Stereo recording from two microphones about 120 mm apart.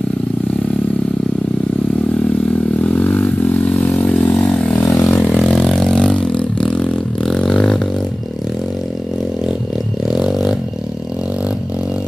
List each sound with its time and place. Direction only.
2.4 s vehicle: 10° left (ahead or behind)
4.3 s vehicle: 5° left (ahead or behind)
4.8 s vehicle: 25° left (ahead or behind)
5.2 s vehicle: 5° left (ahead or behind)
10.1 s vehicle: 5° right (ahead or behind)